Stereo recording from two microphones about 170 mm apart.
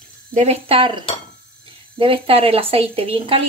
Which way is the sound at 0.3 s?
40° right (ahead or behind).